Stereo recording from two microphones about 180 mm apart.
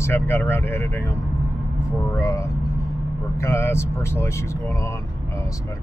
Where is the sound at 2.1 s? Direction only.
15° left (ahead or behind).